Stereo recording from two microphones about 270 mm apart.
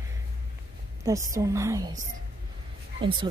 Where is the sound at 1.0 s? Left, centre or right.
Centre.